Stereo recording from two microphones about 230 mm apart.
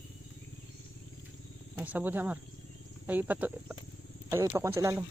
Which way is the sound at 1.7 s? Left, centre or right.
Centre.